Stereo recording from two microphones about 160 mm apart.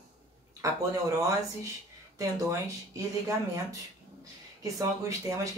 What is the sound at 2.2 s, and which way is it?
Speech, 20° right (ahead or behind).